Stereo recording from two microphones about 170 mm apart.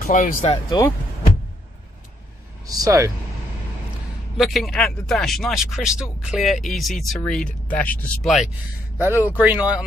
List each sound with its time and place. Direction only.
0.0 s speech: 50° left (ahead or behind)
0.4 s speech: 35° left (ahead or behind)
2.6 s speech: 20° right (ahead or behind)
4.4 s speech: centre (ahead or behind)
8.9 s speech: 10° right (ahead or behind)